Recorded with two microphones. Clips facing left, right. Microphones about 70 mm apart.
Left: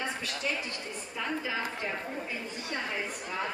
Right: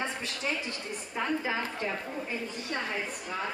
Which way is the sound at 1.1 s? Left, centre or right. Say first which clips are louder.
Right 3 dB; right.